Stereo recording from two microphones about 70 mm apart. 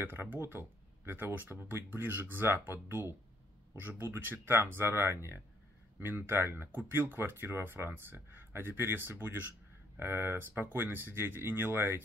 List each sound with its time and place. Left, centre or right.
0.0 s speech: right